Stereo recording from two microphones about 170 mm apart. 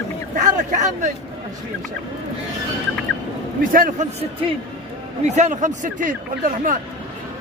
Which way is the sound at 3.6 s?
55° right (ahead or behind).